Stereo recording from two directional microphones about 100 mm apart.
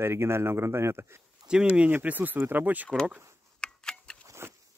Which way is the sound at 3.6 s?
10° left (ahead or behind).